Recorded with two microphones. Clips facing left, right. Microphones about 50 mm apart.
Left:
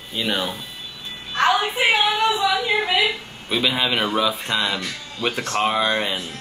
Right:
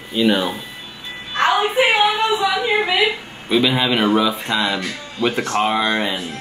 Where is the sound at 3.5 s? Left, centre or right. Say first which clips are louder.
Right 4 dB; centre.